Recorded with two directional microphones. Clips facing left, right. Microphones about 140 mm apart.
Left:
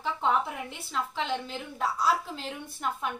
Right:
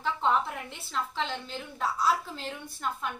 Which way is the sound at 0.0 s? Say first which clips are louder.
Even; 10° left (ahead or behind).